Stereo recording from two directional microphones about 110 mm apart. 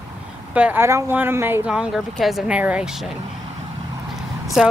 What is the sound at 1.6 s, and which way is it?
Speech, 10° right (ahead or behind).